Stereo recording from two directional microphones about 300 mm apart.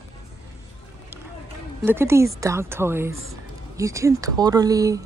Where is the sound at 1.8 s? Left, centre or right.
Centre.